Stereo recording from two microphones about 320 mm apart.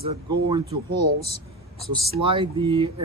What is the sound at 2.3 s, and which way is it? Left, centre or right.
Speech, centre.